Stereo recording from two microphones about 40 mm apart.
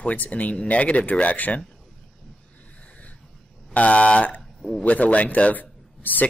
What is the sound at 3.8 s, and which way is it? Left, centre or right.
Speech, left.